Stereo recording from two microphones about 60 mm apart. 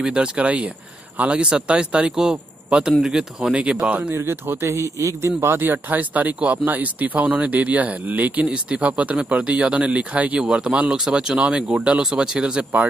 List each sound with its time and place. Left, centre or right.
0.0 s speech: centre
4.1 s a man's voice: right
5.4 s speech: right
8.5 s speech: centre
10.4 s speech: centre